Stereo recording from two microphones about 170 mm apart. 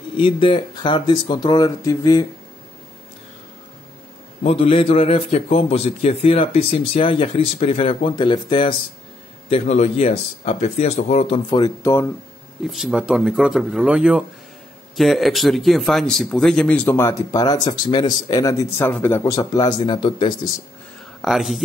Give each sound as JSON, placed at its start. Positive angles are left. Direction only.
{"t": 0.2, "sound": "speech", "side_deg": 30}
{"t": 4.4, "sound": "a man's voice", "side_deg": 35}
{"t": 9.5, "sound": "a man's voice", "side_deg": 40}
{"t": 12.6, "sound": "speech", "side_deg": 0}
{"t": 21.2, "sound": "speech", "side_deg": 0}